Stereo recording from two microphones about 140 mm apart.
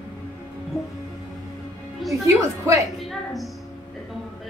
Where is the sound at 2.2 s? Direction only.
20° right (ahead or behind).